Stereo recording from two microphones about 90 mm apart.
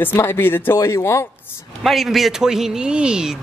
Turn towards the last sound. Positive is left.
turn(degrees=-10)  # may be behind; listen again after turning